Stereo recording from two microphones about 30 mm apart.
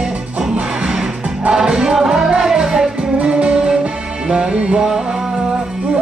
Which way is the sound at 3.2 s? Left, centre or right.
Right.